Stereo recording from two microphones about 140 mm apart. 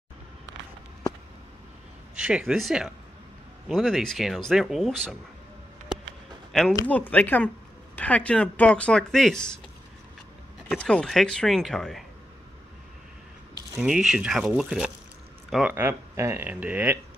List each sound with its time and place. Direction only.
2.1 s speech: 5° right (ahead or behind)
6.5 s speech: centre (ahead or behind)
10.7 s speech: 5° left (ahead or behind)
13.7 s speech: 5° right (ahead or behind)
15.7 s speech: 20° right (ahead or behind)